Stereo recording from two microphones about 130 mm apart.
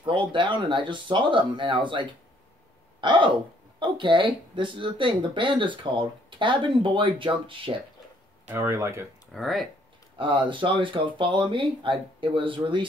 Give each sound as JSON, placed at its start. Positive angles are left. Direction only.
{"t": 0.0, "sound": "speech", "side_deg": -40}
{"t": 3.0, "sound": "hiccup", "side_deg": -40}
{"t": 3.8, "sound": "speech", "side_deg": -40}
{"t": 8.5, "sound": "speech", "side_deg": -20}
{"t": 9.3, "sound": "speech", "side_deg": 0}
{"t": 10.1, "sound": "speech", "side_deg": -40}